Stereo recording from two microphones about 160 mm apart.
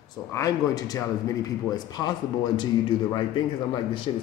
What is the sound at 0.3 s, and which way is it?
Speech, 20° left (ahead or behind).